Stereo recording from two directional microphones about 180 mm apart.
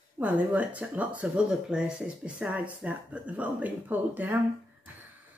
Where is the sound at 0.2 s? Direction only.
10° right (ahead or behind).